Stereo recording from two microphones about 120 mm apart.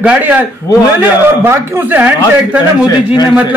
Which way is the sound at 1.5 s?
15° right (ahead or behind).